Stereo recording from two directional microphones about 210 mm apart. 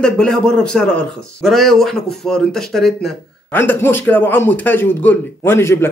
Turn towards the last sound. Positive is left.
turn(degrees=10)  # may be behind; listen again after turning